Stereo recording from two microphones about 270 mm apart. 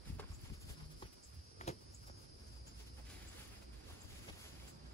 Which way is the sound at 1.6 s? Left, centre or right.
Left.